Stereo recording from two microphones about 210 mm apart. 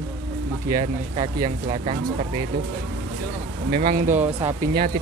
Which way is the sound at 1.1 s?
25° right (ahead or behind).